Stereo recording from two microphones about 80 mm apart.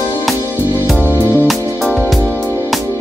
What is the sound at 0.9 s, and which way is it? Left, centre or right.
Music, left.